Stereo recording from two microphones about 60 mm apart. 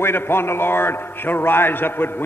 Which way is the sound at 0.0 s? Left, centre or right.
Left.